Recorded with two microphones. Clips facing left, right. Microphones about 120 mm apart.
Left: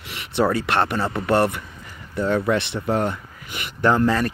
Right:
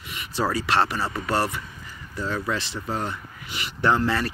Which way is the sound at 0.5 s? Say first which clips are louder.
Left 2 dB; 55° left (ahead or behind).